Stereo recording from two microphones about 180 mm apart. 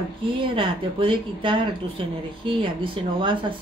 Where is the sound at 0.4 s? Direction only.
30° right (ahead or behind).